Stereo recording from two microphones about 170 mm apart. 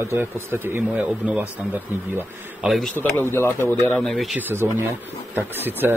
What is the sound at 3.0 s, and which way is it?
Speech, 15° left (ahead or behind).